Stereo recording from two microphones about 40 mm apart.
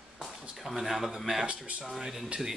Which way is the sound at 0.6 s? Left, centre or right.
Centre.